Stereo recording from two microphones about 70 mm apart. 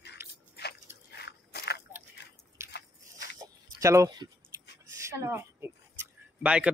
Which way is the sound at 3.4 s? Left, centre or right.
Right.